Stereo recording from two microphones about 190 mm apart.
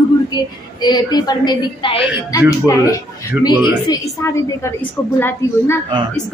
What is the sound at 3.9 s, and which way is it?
A man's voice, 15° left (ahead or behind).